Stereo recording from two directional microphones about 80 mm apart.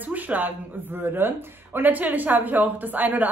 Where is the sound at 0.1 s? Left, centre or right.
Right.